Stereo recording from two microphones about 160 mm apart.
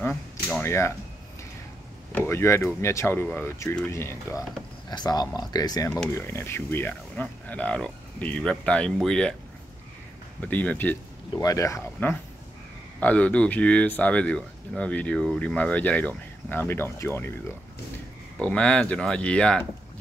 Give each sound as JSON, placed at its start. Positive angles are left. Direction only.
{"t": 0.6, "sound": "speech", "side_deg": 15}
{"t": 2.1, "sound": "speech", "side_deg": 15}
{"t": 10.4, "sound": "speech", "side_deg": 10}
{"t": 11.3, "sound": "speech", "side_deg": 20}
{"t": 18.4, "sound": "speech", "side_deg": 5}